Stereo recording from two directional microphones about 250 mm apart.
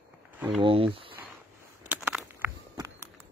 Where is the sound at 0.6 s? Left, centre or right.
Right.